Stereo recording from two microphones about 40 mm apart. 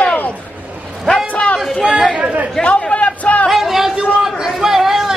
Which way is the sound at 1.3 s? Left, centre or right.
Left.